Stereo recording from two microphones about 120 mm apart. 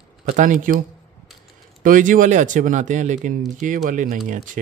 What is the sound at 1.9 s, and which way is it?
Speech, 90° right.